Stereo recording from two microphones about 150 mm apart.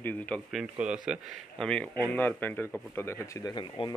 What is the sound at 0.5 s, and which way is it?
Speech, 5° right (ahead or behind).